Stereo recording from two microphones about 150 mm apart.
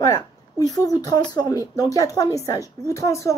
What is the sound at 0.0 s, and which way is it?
A woman's voice, 25° left (ahead or behind).